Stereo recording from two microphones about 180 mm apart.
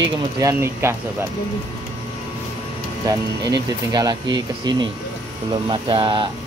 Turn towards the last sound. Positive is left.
turn(degrees=-25)  # may be behind; listen again after turning